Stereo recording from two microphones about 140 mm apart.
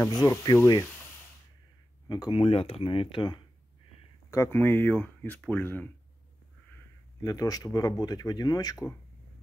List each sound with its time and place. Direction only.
0.1 s speech: 30° left (ahead or behind)
2.0 s speech: 30° left (ahead or behind)
2.3 s speech: 45° left (ahead or behind)
4.3 s speech: 15° left (ahead or behind)
7.2 s speech: 25° left (ahead or behind)